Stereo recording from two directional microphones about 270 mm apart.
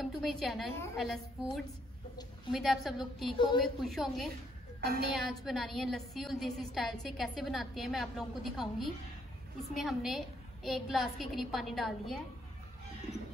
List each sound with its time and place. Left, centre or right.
0.0 s a woman's voice: centre